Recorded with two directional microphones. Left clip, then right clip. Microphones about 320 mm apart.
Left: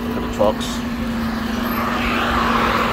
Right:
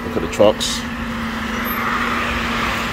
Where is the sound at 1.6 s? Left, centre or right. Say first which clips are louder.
Right 2 dB; centre.